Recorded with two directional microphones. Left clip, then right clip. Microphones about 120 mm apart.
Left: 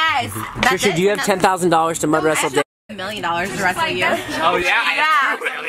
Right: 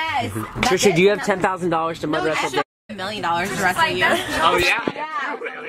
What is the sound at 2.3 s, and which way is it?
A man's voice, centre (ahead or behind).